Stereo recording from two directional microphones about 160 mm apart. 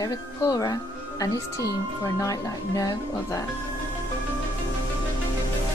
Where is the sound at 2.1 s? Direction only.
20° left (ahead or behind).